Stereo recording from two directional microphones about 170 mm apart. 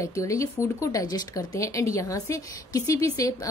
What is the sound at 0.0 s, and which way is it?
A woman's voice, 20° left (ahead or behind).